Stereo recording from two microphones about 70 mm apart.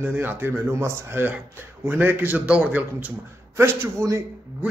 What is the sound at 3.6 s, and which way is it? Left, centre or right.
Speech, right.